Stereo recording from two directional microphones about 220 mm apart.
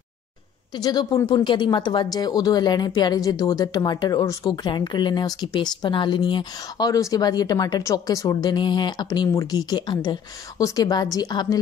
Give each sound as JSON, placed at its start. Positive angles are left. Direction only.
{"t": 0.7, "sound": "speech", "side_deg": 15}